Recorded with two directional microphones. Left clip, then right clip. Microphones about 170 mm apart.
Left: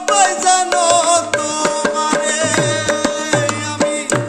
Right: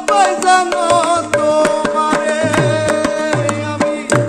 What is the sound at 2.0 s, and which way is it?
Music, 40° left (ahead or behind).